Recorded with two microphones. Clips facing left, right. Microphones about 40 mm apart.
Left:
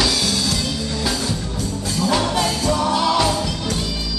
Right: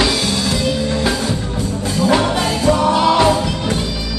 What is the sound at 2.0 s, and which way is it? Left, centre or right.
Music, centre.